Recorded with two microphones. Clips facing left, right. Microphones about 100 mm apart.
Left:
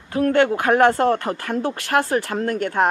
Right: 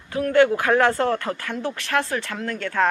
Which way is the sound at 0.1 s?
40° left (ahead or behind).